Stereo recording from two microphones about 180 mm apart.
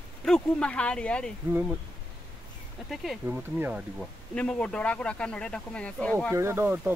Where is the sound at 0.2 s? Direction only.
5° left (ahead or behind).